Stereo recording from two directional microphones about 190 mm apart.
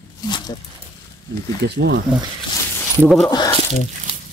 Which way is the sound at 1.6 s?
65° right (ahead or behind).